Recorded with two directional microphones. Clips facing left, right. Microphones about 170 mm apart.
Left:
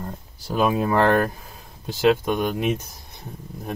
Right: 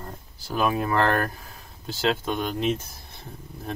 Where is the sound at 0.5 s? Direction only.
15° left (ahead or behind).